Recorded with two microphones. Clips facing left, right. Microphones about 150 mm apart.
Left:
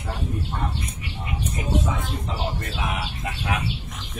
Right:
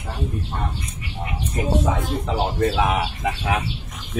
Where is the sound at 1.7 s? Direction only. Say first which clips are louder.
Right 4 dB; 90° right.